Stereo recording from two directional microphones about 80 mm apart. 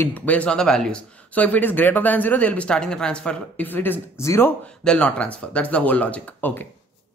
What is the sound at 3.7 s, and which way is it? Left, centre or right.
Speech, left.